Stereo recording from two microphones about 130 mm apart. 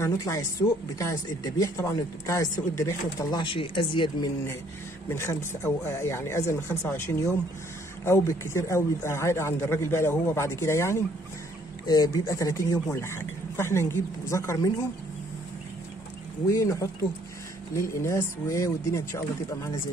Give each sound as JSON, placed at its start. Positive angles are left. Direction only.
{"t": 0.0, "sound": "speech", "side_deg": 25}
{"t": 5.1, "sound": "speech", "side_deg": 20}
{"t": 16.4, "sound": "speech", "side_deg": 25}